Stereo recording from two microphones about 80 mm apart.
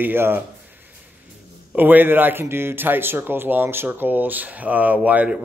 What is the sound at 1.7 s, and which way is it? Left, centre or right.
Speech, right.